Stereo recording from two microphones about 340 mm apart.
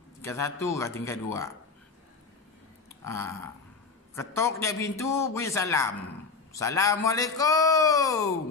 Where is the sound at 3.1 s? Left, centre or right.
Centre.